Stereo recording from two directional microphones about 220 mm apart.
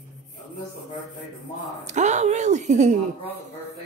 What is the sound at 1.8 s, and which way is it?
A woman's voice, 30° right (ahead or behind).